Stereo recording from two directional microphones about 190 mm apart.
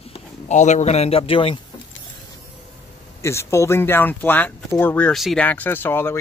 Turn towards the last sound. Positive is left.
turn(degrees=10)  # may be behind; listen again after turning